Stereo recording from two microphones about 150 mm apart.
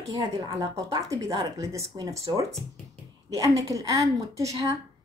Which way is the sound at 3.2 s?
25° right (ahead or behind).